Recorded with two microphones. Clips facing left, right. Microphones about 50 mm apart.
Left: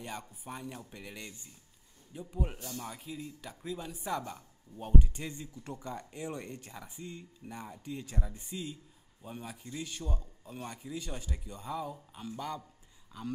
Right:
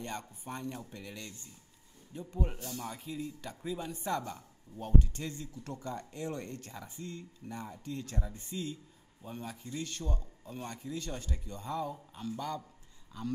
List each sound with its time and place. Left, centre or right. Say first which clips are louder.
0.0 s speech: right 2 dB; centre